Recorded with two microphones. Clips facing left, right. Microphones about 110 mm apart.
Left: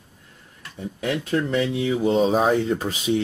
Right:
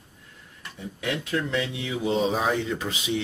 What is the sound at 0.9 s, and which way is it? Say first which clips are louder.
Speech: left 4 dB; 40° left (ahead or behind).